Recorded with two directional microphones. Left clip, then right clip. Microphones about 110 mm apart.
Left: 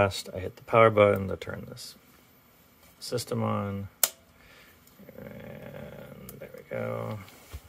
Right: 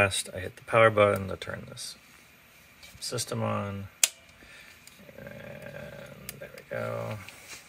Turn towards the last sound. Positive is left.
turn(degrees=25)  # may be behind; listen again after turning